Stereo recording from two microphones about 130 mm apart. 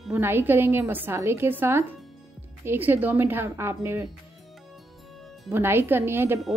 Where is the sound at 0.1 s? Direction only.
15° right (ahead or behind).